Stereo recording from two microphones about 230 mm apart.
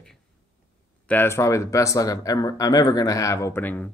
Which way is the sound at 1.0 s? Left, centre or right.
Centre.